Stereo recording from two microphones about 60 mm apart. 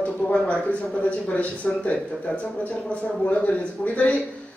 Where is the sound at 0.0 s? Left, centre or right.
Centre.